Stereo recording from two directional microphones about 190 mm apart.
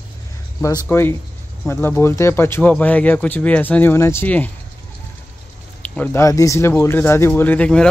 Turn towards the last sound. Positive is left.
turn(degrees=5)  # may be behind; listen again after turning